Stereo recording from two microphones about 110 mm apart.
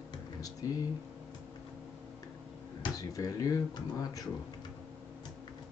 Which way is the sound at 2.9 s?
30° left (ahead or behind).